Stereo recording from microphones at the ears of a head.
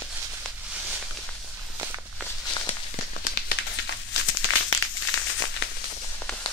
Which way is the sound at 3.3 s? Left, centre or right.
Left.